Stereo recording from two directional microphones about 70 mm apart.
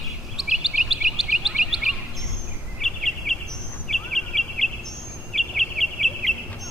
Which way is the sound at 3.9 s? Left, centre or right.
Centre.